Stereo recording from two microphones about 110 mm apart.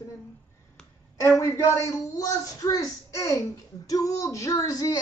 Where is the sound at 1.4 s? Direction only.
30° left (ahead or behind).